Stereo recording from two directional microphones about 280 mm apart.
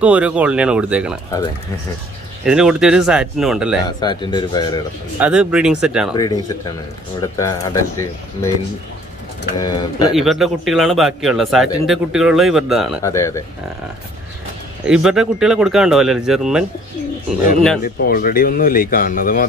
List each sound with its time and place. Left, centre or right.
0.0 s speech: centre
2.4 s speech: centre
4.0 s speech: centre
5.2 s speech: centre
6.1 s speech: centre
9.6 s speech: centre
10.1 s speech: centre
13.0 s speech: centre
14.9 s speech: centre
17.8 s speech: left